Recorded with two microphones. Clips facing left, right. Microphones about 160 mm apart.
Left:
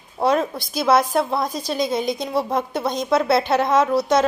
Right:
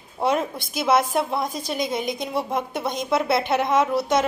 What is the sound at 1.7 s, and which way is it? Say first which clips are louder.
Speech: left 4 dB; 25° left (ahead or behind).